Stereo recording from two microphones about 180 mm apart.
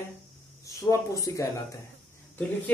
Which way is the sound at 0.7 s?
15° left (ahead or behind).